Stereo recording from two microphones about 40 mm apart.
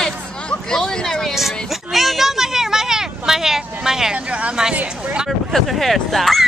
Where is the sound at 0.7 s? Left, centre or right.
Centre.